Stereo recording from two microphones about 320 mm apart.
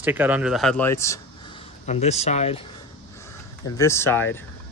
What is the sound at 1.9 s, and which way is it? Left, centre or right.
Speech, centre.